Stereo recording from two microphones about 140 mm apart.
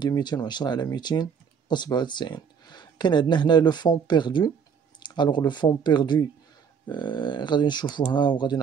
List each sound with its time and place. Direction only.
0.0 s speech: 30° left (ahead or behind)